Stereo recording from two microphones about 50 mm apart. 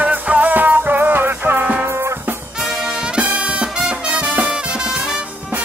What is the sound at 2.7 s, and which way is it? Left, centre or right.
Brass instrument, centre.